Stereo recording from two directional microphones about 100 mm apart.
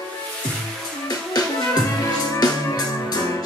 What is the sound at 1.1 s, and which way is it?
Music, 40° left (ahead or behind).